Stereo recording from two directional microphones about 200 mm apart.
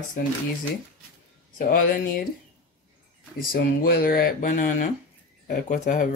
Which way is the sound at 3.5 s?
45° left (ahead or behind).